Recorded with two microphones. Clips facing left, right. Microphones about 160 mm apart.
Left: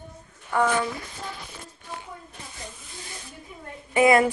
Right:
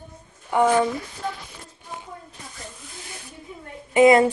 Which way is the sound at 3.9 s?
20° right (ahead or behind).